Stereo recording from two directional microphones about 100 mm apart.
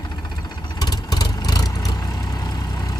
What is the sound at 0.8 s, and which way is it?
Vehicle, 40° left (ahead or behind).